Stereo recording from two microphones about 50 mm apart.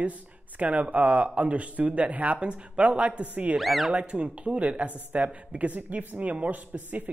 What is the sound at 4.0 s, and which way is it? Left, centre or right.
Speech, right.